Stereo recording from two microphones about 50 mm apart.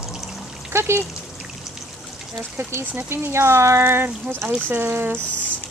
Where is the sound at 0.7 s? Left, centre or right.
Right.